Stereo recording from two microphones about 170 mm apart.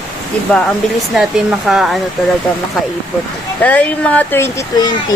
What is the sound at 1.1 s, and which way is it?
Speech, 5° right (ahead or behind).